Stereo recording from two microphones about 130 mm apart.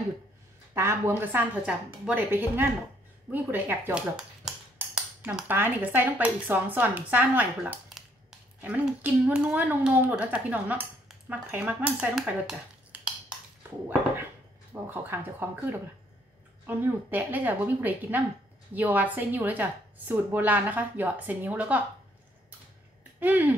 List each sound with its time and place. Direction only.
0.7 s cutlery: 20° right (ahead or behind)
11.1 s speech: 10° right (ahead or behind)
12.3 s a sound: 10° right (ahead or behind)
14.7 s cutlery: 15° right (ahead or behind)
23.1 s speech: 15° right (ahead or behind)